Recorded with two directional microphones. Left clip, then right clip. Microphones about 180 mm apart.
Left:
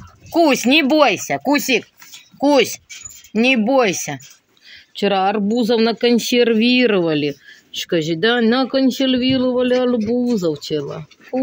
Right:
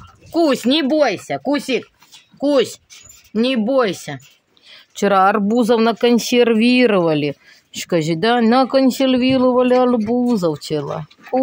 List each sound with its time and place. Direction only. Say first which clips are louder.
0.3 s speech: left 2 dB; 20° right (ahead or behind)
2.4 s speech: left 2 dB; 15° right (ahead or behind)
4.7 s speech: right 3 dB; 40° right (ahead or behind)